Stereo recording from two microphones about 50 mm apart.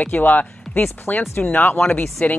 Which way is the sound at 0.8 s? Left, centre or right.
Left.